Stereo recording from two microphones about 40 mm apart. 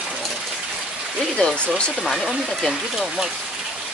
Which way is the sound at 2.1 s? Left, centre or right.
Centre.